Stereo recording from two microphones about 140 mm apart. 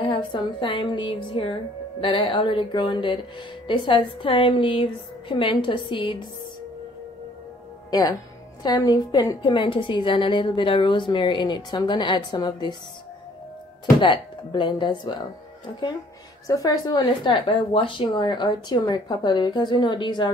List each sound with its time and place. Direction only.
0.0 s speech: 35° left (ahead or behind)
7.9 s speech: 25° left (ahead or behind)
14.0 s speech: 35° left (ahead or behind)